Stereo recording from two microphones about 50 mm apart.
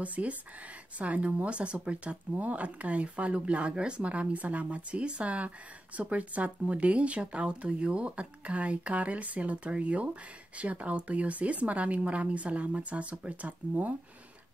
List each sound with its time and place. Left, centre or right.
0.0 s speech: right